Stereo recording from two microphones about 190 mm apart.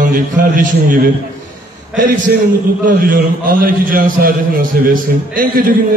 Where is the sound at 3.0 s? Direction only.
45° right (ahead or behind).